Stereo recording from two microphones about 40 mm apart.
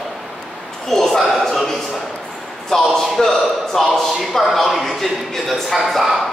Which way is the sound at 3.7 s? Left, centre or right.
Centre.